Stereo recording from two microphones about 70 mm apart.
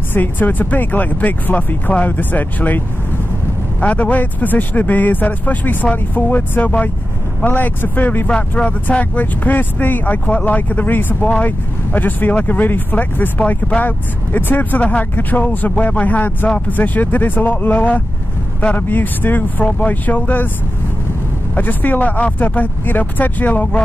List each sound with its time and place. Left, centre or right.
0.1 s speech: left
3.8 s speech: left
8.3 s speech: centre
21.5 s speech: left